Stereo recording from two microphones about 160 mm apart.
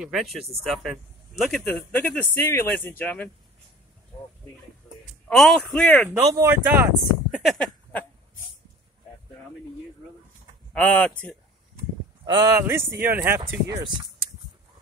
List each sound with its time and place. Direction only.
0.0 s speech: centre (ahead or behind)
5.3 s speech: centre (ahead or behind)
6.2 s speech: 20° right (ahead or behind); by 8.0 s 5° left (ahead or behind)
10.7 s speech: 10° left (ahead or behind)
12.3 s speech: 25° right (ahead or behind)
12.6 s speech: 15° right (ahead or behind)